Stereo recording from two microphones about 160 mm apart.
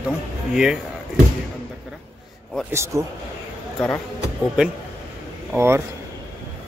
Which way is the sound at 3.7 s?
10° left (ahead or behind).